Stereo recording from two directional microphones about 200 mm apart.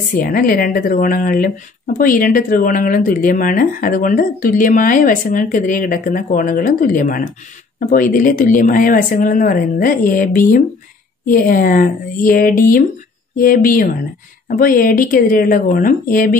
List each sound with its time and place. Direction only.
0.1 s speech: 45° left (ahead or behind)